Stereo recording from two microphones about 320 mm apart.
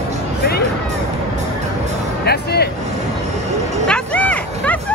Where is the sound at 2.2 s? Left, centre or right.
Left.